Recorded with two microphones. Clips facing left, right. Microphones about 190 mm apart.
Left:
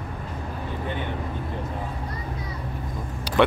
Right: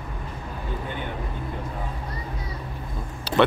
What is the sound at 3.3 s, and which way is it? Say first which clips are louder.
Vehicle: even; 15° left (ahead or behind).